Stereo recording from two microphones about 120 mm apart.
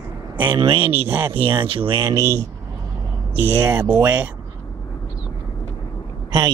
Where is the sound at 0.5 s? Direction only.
45° right (ahead or behind).